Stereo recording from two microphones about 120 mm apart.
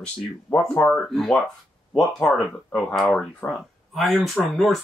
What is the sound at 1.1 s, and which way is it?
Speech, 5° left (ahead or behind).